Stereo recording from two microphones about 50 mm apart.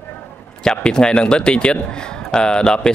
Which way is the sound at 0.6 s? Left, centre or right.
Centre.